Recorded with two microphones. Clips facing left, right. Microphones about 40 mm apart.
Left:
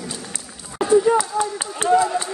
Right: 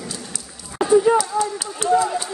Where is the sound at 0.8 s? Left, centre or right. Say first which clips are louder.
Right 1 dB; centre.